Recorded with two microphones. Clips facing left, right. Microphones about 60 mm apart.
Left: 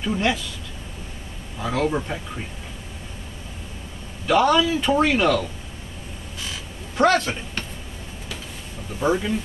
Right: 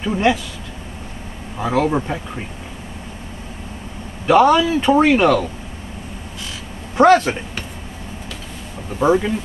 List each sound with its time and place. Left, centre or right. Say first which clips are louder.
0.0 s a man's voice: right 5 dB; right
1.6 s a man's voice: right 5 dB; right
4.3 s a man's voice: right 5 dB; centre
7.0 s a man's voice: right 7 dB; right
9.0 s a man's voice: right 6 dB; centre